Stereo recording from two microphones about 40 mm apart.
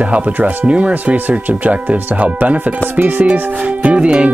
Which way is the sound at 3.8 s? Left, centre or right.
Right.